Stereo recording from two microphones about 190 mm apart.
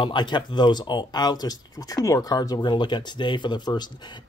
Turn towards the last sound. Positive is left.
turn(degrees=25)  # may be behind; listen again after turning